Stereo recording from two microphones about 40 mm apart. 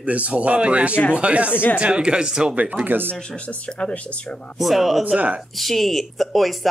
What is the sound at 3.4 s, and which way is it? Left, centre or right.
Speech, left.